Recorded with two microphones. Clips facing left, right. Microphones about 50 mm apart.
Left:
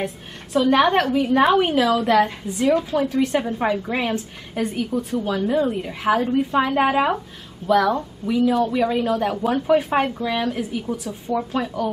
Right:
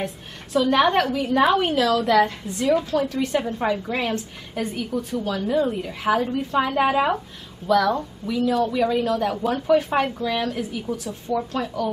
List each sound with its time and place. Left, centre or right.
0.0 s a woman's voice: centre
11.2 s speech: left
11.6 s a woman's voice: centre